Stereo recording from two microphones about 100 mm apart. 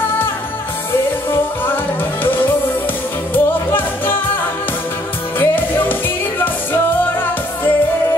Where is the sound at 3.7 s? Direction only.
20° left (ahead or behind).